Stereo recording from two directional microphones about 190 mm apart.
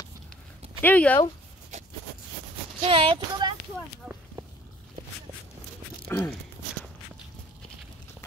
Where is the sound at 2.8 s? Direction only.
30° right (ahead or behind).